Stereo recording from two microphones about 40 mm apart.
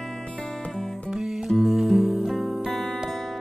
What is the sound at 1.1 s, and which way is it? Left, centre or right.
Music, centre.